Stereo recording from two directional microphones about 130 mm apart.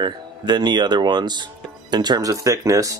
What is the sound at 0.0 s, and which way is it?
Speech, 35° right (ahead or behind).